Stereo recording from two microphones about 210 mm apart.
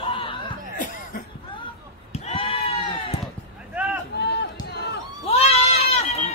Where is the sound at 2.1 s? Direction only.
30° left (ahead or behind).